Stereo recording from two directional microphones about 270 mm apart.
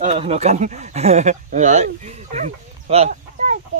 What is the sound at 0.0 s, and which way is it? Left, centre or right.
Speech, right.